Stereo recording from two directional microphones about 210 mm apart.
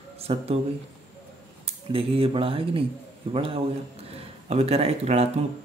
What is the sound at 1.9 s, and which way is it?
Speech, 25° right (ahead or behind).